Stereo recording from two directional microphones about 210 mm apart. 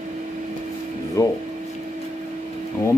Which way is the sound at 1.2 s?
15° left (ahead or behind).